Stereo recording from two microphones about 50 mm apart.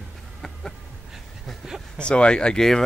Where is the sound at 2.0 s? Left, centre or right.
Centre.